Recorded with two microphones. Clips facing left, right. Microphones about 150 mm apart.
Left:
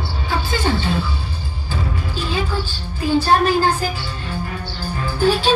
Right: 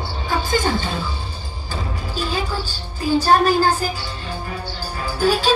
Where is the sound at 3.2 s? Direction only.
40° right (ahead or behind).